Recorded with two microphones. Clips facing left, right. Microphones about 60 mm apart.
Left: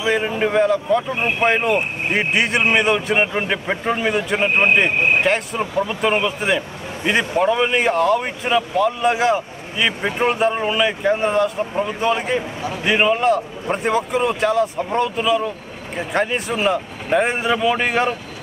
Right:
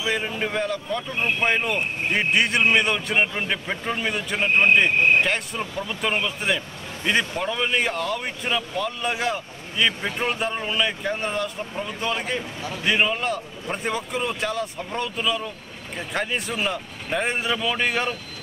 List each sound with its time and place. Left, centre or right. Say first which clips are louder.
0.0 s speech: left 7 dB; centre
10.0 s speech: left 7 dB; centre